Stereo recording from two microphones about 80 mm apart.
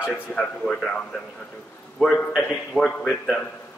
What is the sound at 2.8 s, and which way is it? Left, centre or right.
Speech, centre.